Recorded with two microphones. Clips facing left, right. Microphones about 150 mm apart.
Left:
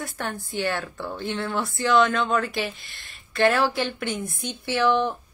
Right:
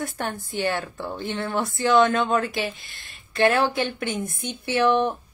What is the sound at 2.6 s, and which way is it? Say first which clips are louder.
Speech: right 1 dB; 45° right (ahead or behind).